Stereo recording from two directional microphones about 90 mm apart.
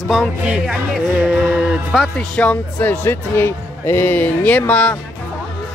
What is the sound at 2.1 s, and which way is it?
Speech, 10° left (ahead or behind).